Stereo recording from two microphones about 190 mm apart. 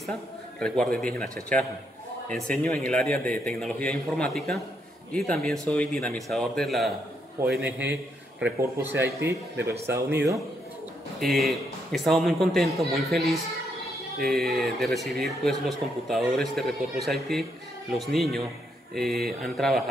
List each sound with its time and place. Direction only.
0.6 s a man's voice: 5° left (ahead or behind); by 10.4 s 15° right (ahead or behind)
11.1 s a man's voice: centre (ahead or behind)
14.2 s a man's voice: centre (ahead or behind)